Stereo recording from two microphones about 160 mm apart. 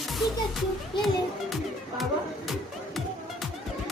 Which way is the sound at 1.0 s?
Centre (ahead or behind).